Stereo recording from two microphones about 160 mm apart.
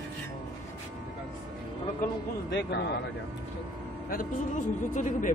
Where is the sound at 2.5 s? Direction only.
90° left.